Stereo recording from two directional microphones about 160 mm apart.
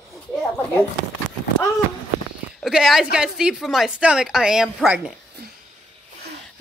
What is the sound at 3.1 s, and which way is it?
A woman's voice, 5° right (ahead or behind).